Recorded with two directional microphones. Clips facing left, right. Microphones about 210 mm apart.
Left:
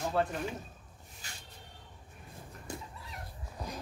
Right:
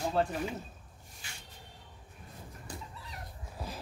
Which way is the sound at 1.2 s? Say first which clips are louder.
Left 1 dB; 40° left (ahead or behind).